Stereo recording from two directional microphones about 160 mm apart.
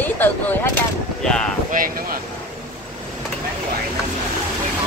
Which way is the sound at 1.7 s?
60° right (ahead or behind).